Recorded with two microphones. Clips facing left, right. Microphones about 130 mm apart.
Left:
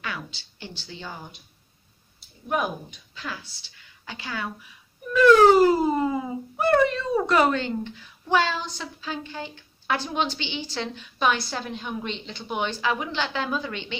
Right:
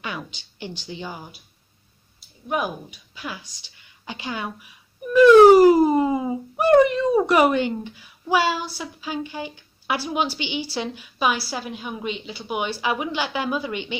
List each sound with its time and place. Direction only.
0.0 s speech: 20° right (ahead or behind)